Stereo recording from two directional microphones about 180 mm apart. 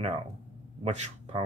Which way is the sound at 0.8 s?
40° right (ahead or behind).